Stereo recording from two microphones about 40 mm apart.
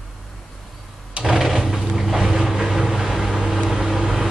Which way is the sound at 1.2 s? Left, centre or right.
Centre.